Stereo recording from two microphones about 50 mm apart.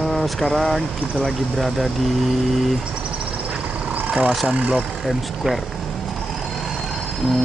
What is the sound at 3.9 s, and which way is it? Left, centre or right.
Vehicle, right.